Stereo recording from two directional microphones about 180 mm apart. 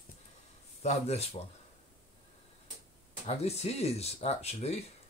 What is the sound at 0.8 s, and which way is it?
Speech, 35° left (ahead or behind).